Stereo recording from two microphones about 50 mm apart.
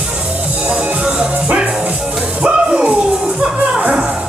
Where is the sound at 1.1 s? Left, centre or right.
Right.